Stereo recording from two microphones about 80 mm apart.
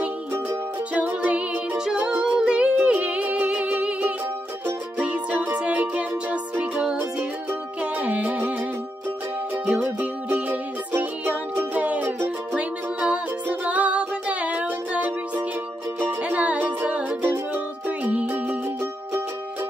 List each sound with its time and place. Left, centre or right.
0.9 s music: centre
1.9 s music: centre
7.8 s music: centre
10.9 s music: right